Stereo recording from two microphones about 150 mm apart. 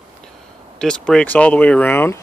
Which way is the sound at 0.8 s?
5° left (ahead or behind).